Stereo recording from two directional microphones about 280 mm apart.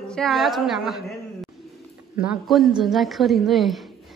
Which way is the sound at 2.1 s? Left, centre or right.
Centre.